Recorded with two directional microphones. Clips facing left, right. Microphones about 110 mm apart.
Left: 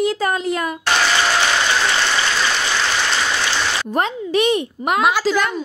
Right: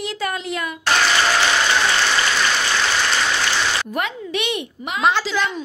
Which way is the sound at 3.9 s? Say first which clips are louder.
Left 5 dB; 35° left (ahead or behind).